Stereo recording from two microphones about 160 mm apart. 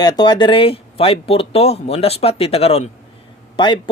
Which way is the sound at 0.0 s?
25° left (ahead or behind).